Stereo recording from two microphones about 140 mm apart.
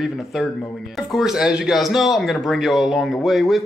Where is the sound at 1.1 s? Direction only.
5° right (ahead or behind).